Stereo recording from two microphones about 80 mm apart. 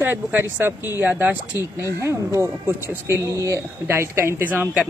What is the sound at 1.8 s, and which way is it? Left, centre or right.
Speech, right.